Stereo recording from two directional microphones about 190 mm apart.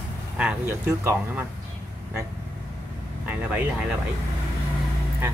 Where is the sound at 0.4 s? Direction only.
5° right (ahead or behind).